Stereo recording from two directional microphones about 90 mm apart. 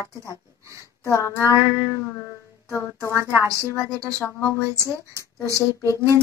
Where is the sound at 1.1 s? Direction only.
35° left (ahead or behind).